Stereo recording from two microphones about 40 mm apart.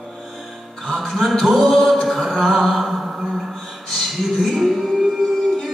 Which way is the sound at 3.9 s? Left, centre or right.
Centre.